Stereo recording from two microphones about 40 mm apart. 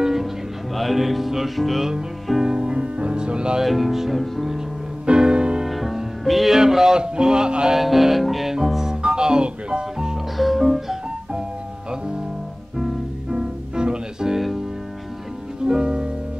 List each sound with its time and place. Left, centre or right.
0.0 s music: centre
2.4 s music: right
3.6 s music: centre
5.0 s music: right
5.7 s music: centre
6.6 s music: centre
7.7 s music: centre
8.5 s music: centre
10.3 s music: centre
13.3 s music: right
15.6 s music: right